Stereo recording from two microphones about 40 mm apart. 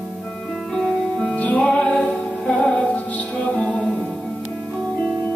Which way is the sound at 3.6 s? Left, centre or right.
Centre.